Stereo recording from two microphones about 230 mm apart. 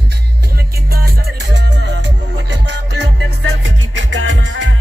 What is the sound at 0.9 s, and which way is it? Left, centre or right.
Music, right.